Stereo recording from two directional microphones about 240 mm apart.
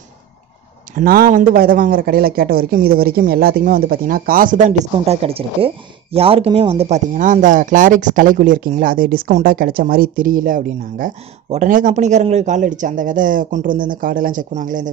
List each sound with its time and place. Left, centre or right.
0.9 s speech: right